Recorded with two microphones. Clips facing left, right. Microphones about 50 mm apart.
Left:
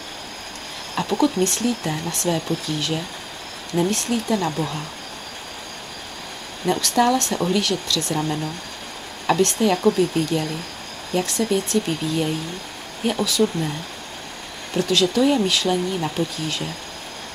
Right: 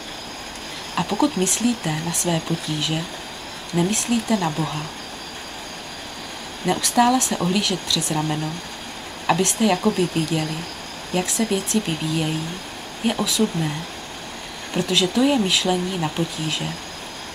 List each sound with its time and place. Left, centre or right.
0.9 s speech: centre
6.6 s speech: centre
14.8 s speech: centre